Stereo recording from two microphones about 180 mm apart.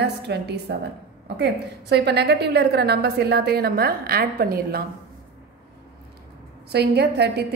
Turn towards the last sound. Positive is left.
turn(degrees=-65)  # may be behind; listen again after turning